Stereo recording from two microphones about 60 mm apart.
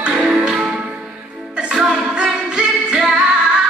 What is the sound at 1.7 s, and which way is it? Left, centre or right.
Music, centre.